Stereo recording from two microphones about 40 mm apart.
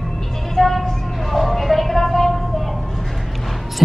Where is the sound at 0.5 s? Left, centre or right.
Centre.